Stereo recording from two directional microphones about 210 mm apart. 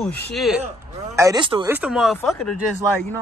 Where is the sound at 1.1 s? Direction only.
20° right (ahead or behind).